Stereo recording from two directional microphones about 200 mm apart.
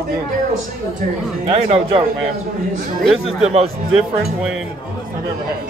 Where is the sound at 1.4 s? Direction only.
30° right (ahead or behind).